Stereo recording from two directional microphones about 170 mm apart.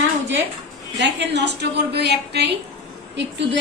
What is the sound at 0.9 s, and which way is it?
A woman's voice, 90° right.